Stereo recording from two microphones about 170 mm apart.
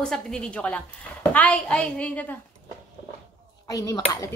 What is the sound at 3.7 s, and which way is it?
Speech, 20° left (ahead or behind).